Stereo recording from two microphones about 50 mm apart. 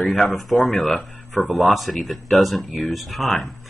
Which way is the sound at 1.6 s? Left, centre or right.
Centre.